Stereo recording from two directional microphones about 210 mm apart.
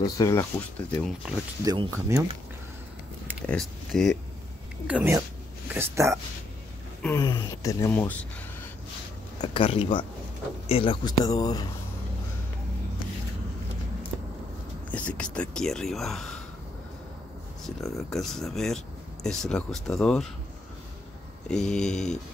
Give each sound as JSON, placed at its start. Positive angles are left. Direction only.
{"t": 0.0, "sound": "speech", "side_deg": 15}
{"t": 1.6, "sound": "speech", "side_deg": -15}
{"t": 3.4, "sound": "speech", "side_deg": 0}
{"t": 4.8, "sound": "speech", "side_deg": -10}
{"t": 7.0, "sound": "speech", "side_deg": 15}
{"t": 9.4, "sound": "speech", "side_deg": 25}
{"t": 14.9, "sound": "speech", "side_deg": 5}
{"t": 17.9, "sound": "speech", "side_deg": 0}
{"t": 21.5, "sound": "speech", "side_deg": 5}